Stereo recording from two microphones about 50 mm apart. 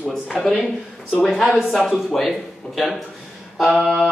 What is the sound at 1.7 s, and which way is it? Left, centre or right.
A man's voice, centre.